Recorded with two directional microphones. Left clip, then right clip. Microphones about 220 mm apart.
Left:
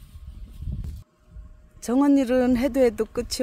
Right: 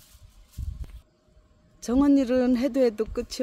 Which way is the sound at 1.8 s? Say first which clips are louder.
Left 1 dB; 5° left (ahead or behind).